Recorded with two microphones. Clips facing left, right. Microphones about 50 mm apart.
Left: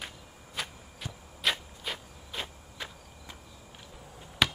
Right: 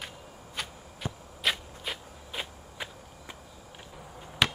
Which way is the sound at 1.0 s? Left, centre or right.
Right.